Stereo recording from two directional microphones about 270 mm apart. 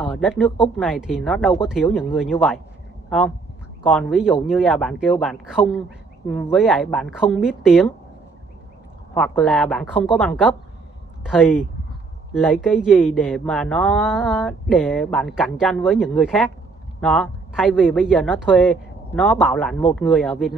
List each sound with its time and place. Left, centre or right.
0.0 s speech: centre
3.9 s speech: centre
9.1 s speech: centre